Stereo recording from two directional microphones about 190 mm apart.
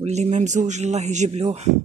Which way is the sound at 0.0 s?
35° right (ahead or behind).